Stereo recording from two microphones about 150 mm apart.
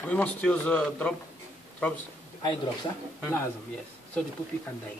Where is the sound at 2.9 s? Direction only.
25° left (ahead or behind).